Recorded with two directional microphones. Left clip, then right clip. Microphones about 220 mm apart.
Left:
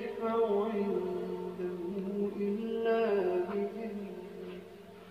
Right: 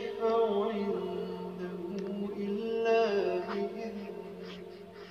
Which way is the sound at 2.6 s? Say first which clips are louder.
Right 4 dB; 30° right (ahead or behind).